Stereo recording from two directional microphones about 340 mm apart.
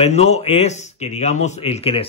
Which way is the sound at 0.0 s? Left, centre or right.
Centre.